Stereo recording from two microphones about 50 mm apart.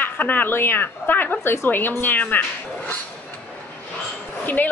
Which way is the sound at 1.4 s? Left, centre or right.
Left.